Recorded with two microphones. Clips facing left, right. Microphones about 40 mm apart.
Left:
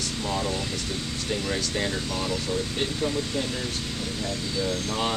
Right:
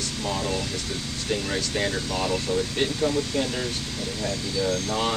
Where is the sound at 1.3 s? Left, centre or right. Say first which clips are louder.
Right 2 dB; centre.